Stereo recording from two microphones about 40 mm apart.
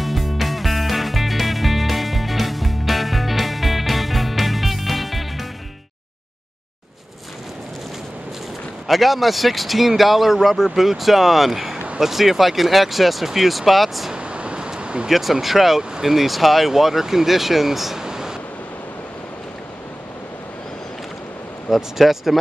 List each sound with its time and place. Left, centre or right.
0.0 s music: centre
8.8 s speech: centre
14.1 s a sound: right
15.0 s speech: centre
18.0 s waves: centre
21.6 s speech: centre